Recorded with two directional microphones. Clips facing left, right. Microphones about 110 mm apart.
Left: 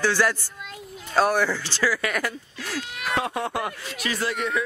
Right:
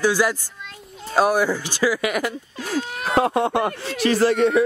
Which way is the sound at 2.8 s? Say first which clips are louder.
Right 7 dB; 40° right (ahead or behind).